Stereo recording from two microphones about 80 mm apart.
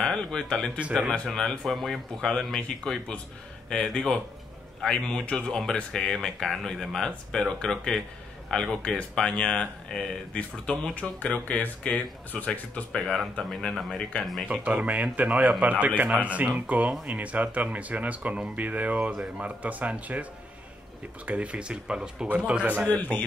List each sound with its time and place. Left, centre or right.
0.0 s speech: centre
11.1 s speech: centre
14.5 s a man's voice: centre
21.3 s speech: centre
22.8 s a man's voice: centre